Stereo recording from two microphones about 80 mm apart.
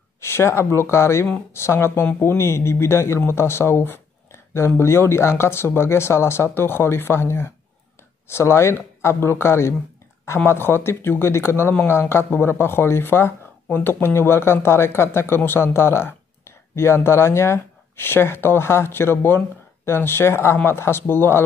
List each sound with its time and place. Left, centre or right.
0.2 s speech: left